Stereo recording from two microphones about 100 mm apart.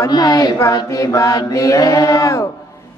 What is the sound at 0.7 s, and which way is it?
Music, 35° left (ahead or behind).